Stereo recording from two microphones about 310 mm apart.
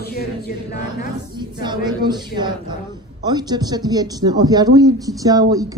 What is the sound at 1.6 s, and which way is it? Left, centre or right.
A woman's voice, centre.